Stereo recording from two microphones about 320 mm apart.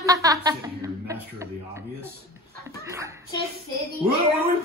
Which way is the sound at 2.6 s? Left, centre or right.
Centre.